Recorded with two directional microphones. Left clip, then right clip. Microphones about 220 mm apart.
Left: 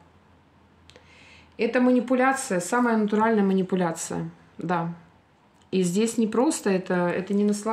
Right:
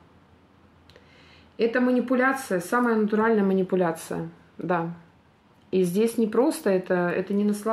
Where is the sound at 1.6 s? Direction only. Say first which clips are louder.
Left 1 dB; 45° left (ahead or behind).